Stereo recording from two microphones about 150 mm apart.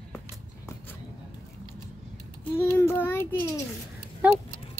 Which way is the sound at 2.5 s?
15° left (ahead or behind).